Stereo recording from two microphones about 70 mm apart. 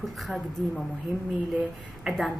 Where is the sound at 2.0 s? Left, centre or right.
Centre.